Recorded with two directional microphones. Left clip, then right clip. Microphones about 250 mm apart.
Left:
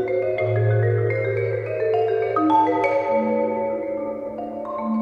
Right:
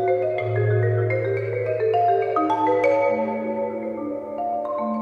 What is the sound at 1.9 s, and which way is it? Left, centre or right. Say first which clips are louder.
Music: right 1 dB; centre.